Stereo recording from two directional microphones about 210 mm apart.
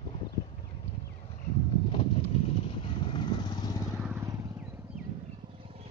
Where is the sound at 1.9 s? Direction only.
25° left (ahead or behind).